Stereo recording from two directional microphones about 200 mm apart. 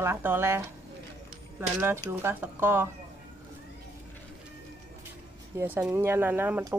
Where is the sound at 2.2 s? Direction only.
10° right (ahead or behind).